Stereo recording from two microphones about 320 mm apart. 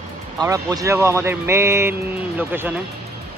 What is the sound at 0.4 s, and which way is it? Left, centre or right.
Speech, centre.